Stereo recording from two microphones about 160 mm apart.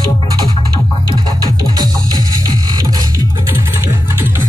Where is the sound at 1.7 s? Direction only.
25° right (ahead or behind).